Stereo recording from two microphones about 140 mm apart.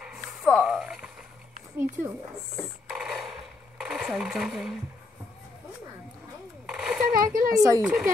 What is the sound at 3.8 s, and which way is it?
Speech, 5° right (ahead or behind).